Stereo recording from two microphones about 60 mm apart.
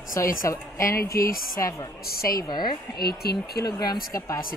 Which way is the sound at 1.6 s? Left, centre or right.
Left.